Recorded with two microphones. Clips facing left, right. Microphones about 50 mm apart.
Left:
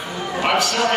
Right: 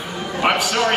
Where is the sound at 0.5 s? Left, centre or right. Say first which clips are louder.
Left 1 dB; centre.